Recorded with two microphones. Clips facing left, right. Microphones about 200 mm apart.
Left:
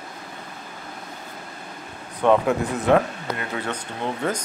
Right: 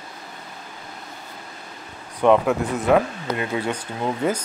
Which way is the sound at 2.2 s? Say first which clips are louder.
Right 1 dB; 10° right (ahead or behind).